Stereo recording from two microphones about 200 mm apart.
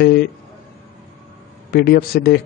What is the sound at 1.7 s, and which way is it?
Speech, 55° left (ahead or behind).